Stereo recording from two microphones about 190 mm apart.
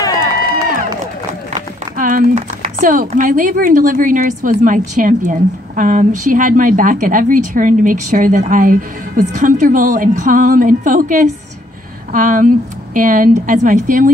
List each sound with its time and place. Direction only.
0.0 s run: 20° left (ahead or behind)
2.0 s speech: 45° right (ahead or behind)